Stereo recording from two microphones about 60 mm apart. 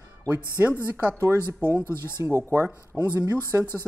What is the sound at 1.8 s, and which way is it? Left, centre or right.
Speech, left.